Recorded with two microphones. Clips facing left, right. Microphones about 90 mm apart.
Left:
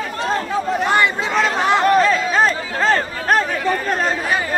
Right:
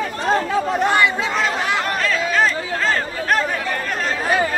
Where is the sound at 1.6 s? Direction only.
30° left (ahead or behind).